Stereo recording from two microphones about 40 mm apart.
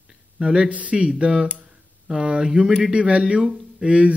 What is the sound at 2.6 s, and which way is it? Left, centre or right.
Speech, centre.